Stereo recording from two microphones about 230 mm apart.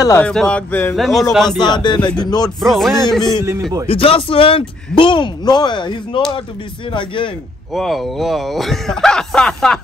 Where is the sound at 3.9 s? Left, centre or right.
Left.